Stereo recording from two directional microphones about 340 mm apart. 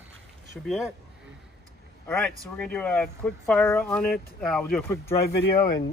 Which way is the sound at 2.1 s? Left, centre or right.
Centre.